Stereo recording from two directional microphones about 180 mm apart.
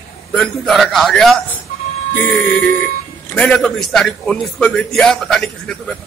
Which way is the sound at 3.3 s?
5° left (ahead or behind).